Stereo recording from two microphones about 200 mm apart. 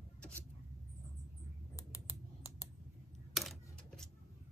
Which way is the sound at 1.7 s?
15° left (ahead or behind).